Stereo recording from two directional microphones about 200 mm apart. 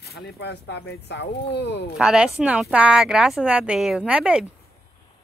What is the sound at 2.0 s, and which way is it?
Speech, 5° right (ahead or behind).